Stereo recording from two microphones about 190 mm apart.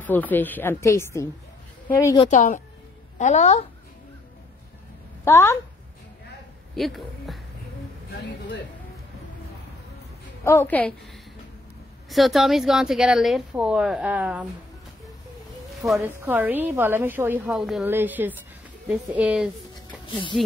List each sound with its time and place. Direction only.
0.0 s a woman's voice: 10° left (ahead or behind)
2.2 s a woman's voice: 40° left (ahead or behind)
5.2 s a woman's voice: 15° left (ahead or behind)
6.7 s speech: centre (ahead or behind)
10.4 s a woman's voice: 15° left (ahead or behind)
12.1 s speech: centre (ahead or behind)
16.0 s a woman's voice: 10° right (ahead or behind)